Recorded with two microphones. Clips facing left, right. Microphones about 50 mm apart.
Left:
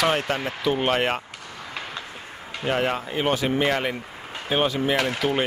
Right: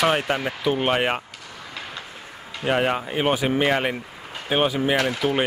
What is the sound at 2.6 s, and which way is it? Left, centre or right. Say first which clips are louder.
Speech: right 2 dB; centre.